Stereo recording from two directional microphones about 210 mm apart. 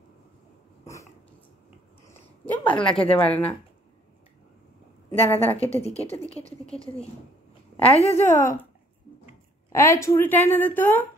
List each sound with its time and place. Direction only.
2.0 s a sound: 10° left (ahead or behind)
3.1 s speech: 5° left (ahead or behind)
5.3 s a woman's voice: 10° left (ahead or behind)
5.7 s a woman's voice: 30° left (ahead or behind)
7.8 s a woman's voice: 10° left (ahead or behind)
9.7 s a woman's voice: 15° left (ahead or behind)